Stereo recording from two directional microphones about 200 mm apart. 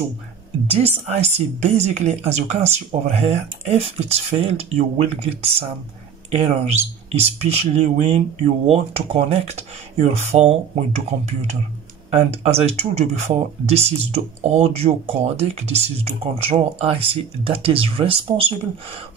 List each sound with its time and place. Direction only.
0.7 s speech: 30° right (ahead or behind)